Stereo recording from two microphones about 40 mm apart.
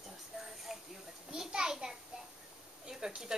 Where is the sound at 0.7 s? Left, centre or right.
Centre.